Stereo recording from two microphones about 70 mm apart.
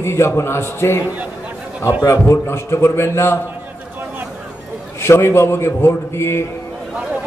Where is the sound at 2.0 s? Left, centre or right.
Left.